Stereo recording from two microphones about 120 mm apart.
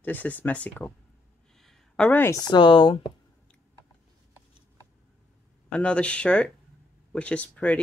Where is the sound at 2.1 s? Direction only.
20° left (ahead or behind).